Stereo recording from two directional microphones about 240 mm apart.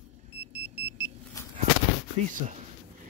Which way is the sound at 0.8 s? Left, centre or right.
Centre.